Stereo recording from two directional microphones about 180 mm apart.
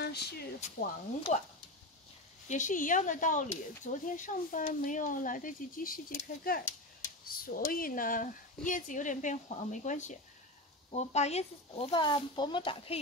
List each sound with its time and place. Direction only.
0.0 s a sound: 65° left (ahead or behind)
0.6 s speech: 40° left (ahead or behind)
2.4 s speech: 45° left (ahead or behind)